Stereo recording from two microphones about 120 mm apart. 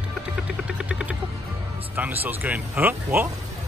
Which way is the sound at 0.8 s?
5° right (ahead or behind).